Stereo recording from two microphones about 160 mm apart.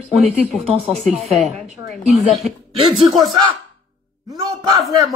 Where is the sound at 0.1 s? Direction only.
Centre (ahead or behind).